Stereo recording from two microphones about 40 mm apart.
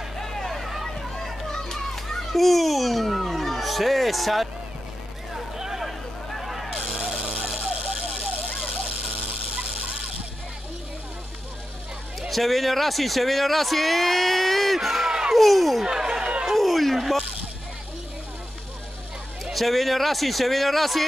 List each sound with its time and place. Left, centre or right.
0.2 s vehicle: centre
0.9 s children playing: centre
2.3 s a sound: centre
5.3 s vehicle: centre
7.0 s a sound: right
12.2 s speech: centre
15.0 s crowd: centre
15.3 s speech: centre
15.8 s chatter: centre
16.4 s a sound: centre
19.5 s speech: centre